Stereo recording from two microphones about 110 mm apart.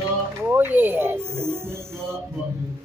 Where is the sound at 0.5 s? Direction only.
15° right (ahead or behind).